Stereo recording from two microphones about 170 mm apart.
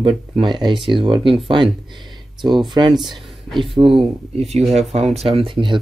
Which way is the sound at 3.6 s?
30° right (ahead or behind).